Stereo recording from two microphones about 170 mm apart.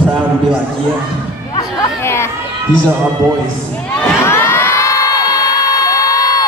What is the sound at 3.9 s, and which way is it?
Crowd, 15° left (ahead or behind).